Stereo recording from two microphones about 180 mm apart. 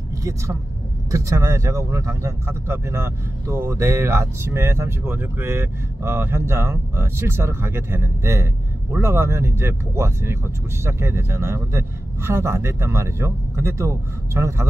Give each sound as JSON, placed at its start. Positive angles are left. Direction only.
{"t": 0.2, "sound": "speech", "side_deg": -15}